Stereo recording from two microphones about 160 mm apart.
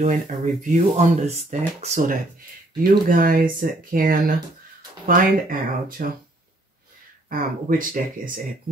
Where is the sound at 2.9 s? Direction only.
65° right (ahead or behind).